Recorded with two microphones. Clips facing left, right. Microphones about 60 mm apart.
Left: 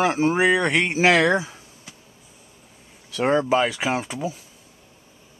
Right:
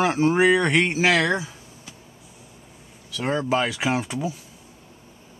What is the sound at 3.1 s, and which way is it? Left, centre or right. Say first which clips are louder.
Speech: left 5 dB; left.